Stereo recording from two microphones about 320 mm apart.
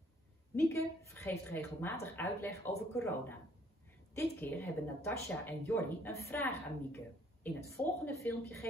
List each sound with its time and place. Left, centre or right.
0.6 s a woman's voice: centre
8.0 s a woman's voice: centre